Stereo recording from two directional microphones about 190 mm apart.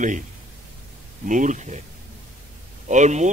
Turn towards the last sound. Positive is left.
turn(degrees=-40)  # may be behind; listen again after turning